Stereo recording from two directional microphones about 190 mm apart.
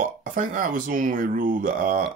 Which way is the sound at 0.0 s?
40° right (ahead or behind).